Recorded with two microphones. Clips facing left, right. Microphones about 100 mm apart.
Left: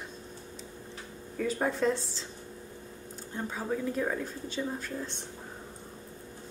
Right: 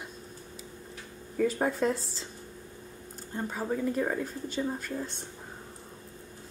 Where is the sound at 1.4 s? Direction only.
5° right (ahead or behind).